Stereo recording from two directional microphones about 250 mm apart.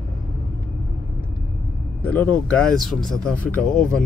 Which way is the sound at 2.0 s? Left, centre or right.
Centre.